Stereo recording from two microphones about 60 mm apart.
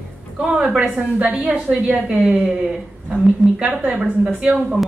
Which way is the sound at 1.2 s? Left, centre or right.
Right.